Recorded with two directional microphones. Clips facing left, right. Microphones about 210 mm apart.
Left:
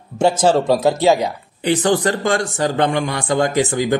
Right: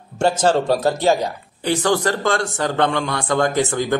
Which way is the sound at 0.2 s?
15° left (ahead or behind).